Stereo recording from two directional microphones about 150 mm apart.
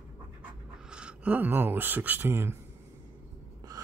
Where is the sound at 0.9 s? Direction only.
5° right (ahead or behind).